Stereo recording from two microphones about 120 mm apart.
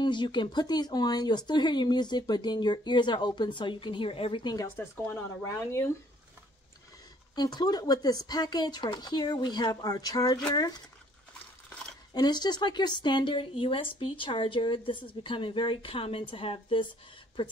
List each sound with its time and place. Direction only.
0.0 s speech: 40° left (ahead or behind)
4.7 s speech: 20° left (ahead or behind)
7.3 s speech: 35° left (ahead or behind)
12.1 s speech: 35° left (ahead or behind)